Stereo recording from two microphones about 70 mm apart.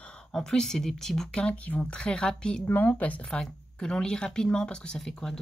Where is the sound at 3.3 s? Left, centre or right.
Centre.